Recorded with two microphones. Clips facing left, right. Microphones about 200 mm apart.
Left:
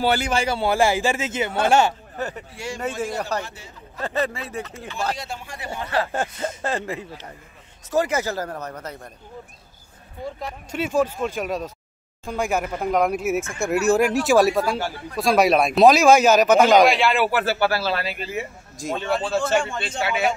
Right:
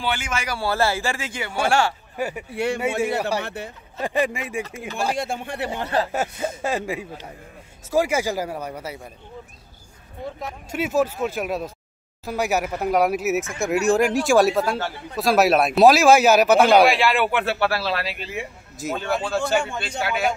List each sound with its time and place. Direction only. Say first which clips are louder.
0.0 s a man's voice: left 6 dB; 40° left (ahead or behind); by 2.0 s 20° left (ahead or behind)
2.1 s a man's voice: right 2 dB; 10° right (ahead or behind)
2.5 s speech: right 8 dB; 60° right (ahead or behind)
3.2 s speech: right 2 dB; 10° right (ahead or behind)
3.4 s speech: right 9 dB; 60° right (ahead or behind)
4.0 s speech: right 2 dB; 15° right (ahead or behind)
5.1 s speech: right 7 dB; 55° right (ahead or behind)
5.7 s speech: even; 20° right (ahead or behind)
6.1 s speech: right 1 dB; 10° right (ahead or behind)
10.4 s speech: right 1 dB; 5° right (ahead or behind)